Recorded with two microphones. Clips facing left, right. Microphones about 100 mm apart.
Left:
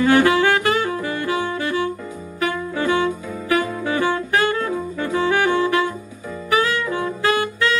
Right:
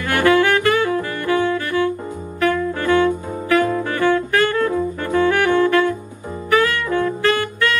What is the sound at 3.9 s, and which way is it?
Saxophone, 15° left (ahead or behind).